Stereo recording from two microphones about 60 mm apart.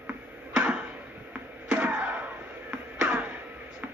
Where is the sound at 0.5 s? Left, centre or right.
Centre.